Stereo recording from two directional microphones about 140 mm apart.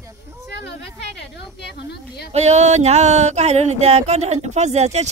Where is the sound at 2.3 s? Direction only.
50° right (ahead or behind).